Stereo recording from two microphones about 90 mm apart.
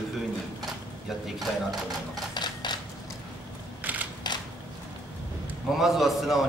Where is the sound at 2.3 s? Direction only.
55° left (ahead or behind).